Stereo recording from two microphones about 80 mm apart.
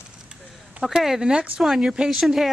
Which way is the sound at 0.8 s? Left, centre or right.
Centre.